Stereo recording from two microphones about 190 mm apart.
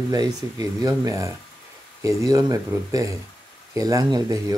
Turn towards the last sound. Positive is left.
turn(degrees=-20)  # may be behind; listen again after turning